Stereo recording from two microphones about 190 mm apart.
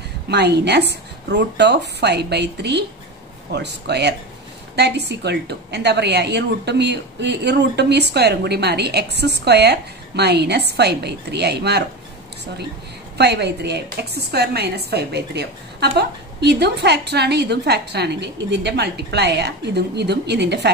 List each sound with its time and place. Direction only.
0.3 s a woman's voice: 60° right (ahead or behind)
13.2 s a woman's voice: 60° right (ahead or behind)